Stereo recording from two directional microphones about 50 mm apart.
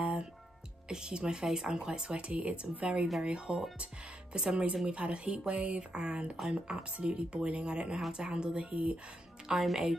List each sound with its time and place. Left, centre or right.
0.8 s speech: centre
9.5 s speech: centre